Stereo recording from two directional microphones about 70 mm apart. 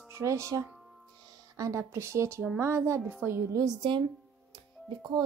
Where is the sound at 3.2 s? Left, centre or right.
Right.